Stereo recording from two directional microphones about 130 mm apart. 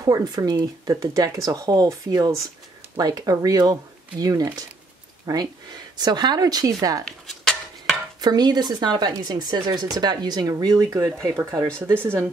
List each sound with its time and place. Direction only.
0.0 s speech: 30° right (ahead or behind)
7.1 s dishes: 5° left (ahead or behind)
8.2 s speech: 30° right (ahead or behind); by 12.2 s 15° right (ahead or behind)